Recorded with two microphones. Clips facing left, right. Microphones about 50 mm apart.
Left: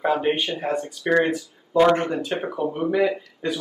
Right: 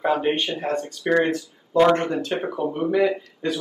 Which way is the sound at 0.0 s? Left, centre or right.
Centre.